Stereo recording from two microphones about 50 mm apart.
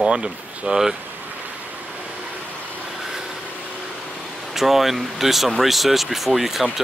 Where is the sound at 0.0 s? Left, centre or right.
Centre.